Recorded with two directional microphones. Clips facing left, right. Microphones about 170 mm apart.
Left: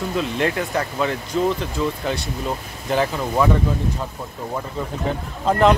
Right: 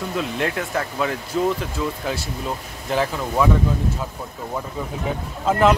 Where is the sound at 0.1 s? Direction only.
Centre (ahead or behind).